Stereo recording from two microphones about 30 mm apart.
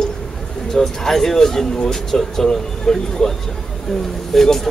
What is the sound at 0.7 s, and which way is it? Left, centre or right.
Speech, centre.